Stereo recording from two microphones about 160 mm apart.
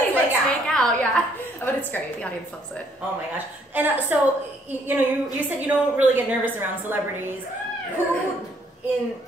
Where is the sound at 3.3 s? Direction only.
10° right (ahead or behind).